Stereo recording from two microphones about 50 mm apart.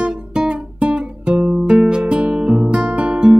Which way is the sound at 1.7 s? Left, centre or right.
Centre.